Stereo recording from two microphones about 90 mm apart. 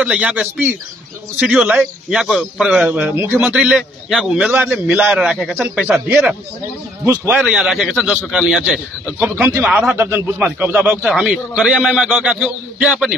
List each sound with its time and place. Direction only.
0.0 s speech: 15° right (ahead or behind)
4.9 s a man's voice: 5° right (ahead or behind)
7.2 s speech: 20° right (ahead or behind)
7.5 s a man's voice: 5° right (ahead or behind)
9.3 s speech: 30° right (ahead or behind)
9.7 s speech: 10° right (ahead or behind)
9.9 s speech: 25° right (ahead or behind)